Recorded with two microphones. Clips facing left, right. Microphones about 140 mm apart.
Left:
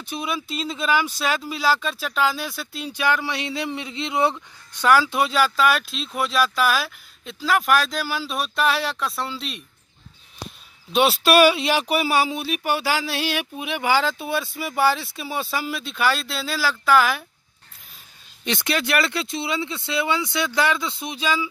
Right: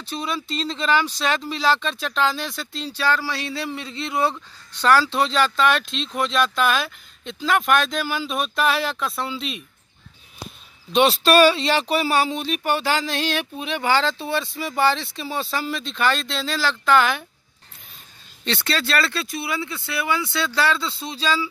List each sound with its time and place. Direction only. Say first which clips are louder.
0.0 s speech: even; 10° left (ahead or behind)
10.9 s speech: right 1 dB; 5° left (ahead or behind)
18.4 s speech: left 1 dB; 15° left (ahead or behind)